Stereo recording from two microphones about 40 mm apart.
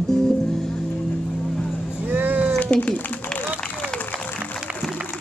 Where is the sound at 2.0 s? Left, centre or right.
Right.